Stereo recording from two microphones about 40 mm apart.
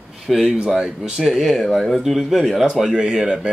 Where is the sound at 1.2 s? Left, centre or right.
Centre.